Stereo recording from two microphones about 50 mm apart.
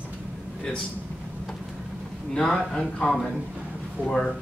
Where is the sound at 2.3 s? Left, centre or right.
Centre.